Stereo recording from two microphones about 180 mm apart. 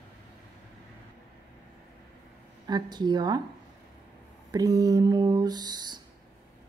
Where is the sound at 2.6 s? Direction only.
25° right (ahead or behind).